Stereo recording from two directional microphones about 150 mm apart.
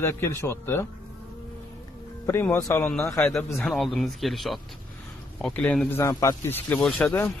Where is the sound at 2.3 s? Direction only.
15° left (ahead or behind).